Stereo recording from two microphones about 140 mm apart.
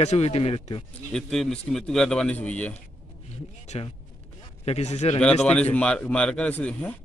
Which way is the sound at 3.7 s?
55° left (ahead or behind).